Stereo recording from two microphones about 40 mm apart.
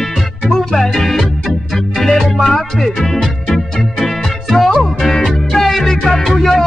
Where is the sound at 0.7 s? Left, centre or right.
Centre.